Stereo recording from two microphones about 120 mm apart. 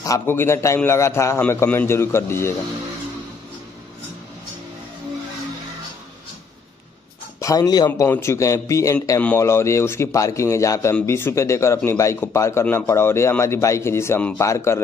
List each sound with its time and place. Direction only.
0.0 s speech: 25° left (ahead or behind)
7.3 s speech: 30° left (ahead or behind)
8.1 s speech: 25° left (ahead or behind)